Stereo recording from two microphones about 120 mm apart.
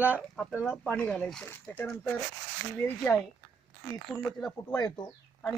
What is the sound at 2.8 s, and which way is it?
Speech, 15° left (ahead or behind).